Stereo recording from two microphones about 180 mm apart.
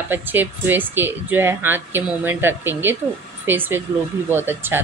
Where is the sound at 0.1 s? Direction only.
10° right (ahead or behind).